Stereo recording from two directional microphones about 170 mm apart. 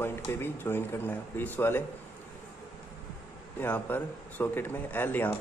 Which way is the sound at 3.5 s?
10° left (ahead or behind).